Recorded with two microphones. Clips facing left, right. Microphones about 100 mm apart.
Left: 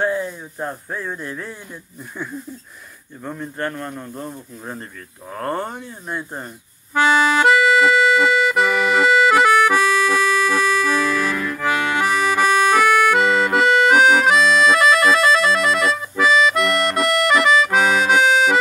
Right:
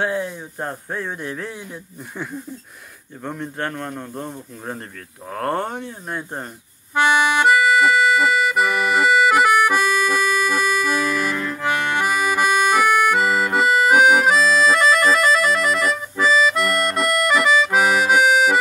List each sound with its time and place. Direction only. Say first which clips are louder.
0.0 s speech: left 1 dB; 65° right (ahead or behind)
3.3 s speech: even; 70° right (ahead or behind)
5.3 s speech: right 2 dB; 60° right (ahead or behind)
6.9 s accordion: left 1 dB; 20° right (ahead or behind)
7.5 s accordion: left 1 dB; 5° right (ahead or behind)